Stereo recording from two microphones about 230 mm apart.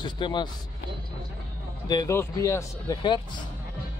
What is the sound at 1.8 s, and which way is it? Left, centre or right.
Speech, centre.